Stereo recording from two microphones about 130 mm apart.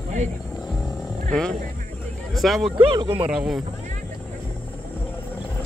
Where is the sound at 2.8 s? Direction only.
45° right (ahead or behind).